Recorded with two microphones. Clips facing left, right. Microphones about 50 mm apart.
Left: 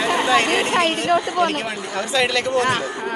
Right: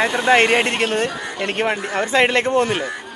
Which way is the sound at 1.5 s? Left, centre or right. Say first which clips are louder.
Right 4 dB; right.